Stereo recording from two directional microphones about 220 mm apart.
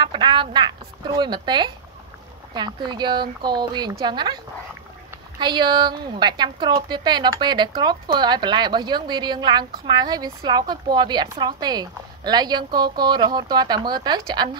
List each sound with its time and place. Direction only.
0.0 s a woman's voice: 20° right (ahead or behind)
5.4 s a woman's voice: 20° right (ahead or behind)